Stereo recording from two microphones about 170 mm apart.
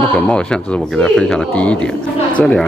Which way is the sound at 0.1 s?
5° left (ahead or behind).